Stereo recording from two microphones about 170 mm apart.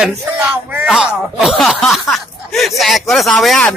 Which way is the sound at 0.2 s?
15° right (ahead or behind).